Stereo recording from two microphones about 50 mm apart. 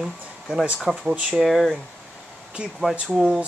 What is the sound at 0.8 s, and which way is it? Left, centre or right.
Speech, centre.